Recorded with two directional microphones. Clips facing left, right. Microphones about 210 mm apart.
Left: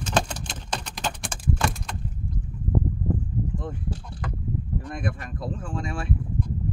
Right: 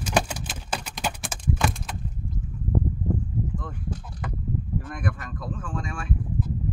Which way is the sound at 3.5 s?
25° left (ahead or behind).